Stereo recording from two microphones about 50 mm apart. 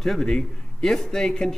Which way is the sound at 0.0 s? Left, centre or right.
Centre.